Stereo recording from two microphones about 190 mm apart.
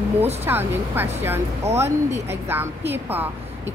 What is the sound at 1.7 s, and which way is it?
Speech, 35° right (ahead or behind).